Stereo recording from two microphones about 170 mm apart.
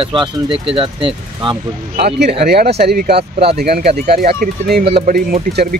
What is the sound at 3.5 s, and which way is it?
Speech, 65° right (ahead or behind).